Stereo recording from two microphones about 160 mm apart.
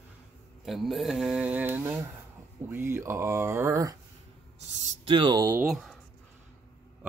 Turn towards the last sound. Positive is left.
turn(degrees=0)  # may be behind; listen again after turning